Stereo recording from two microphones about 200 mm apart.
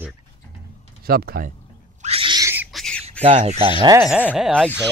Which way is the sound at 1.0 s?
50° right (ahead or behind).